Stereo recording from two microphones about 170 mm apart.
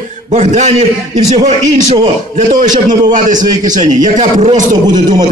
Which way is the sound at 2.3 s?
45° right (ahead or behind).